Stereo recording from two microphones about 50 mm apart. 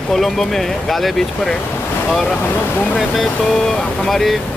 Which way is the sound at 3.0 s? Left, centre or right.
Centre.